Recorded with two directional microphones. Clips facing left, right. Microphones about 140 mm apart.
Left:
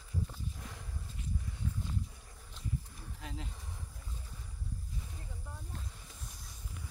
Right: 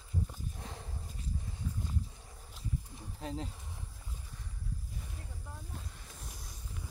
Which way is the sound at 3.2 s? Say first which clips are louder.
Right 7 dB; 35° right (ahead or behind).